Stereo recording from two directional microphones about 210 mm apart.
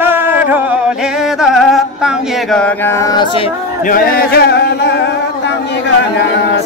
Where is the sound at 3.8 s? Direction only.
45° left (ahead or behind).